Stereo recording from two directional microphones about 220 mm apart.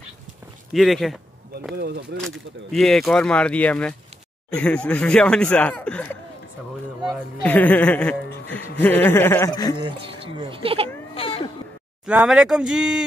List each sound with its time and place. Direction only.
0.7 s speech: centre (ahead or behind)
2.2 s speech: centre (ahead or behind)
9.8 s speech: 25° right (ahead or behind)
11.1 s a sound: 25° left (ahead or behind)
12.1 s speech: 5° right (ahead or behind)